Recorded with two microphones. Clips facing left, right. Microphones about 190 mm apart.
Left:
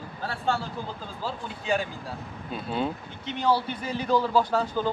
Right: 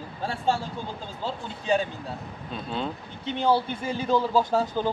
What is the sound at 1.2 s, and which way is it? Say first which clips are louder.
Speech: right 1 dB; 25° right (ahead or behind).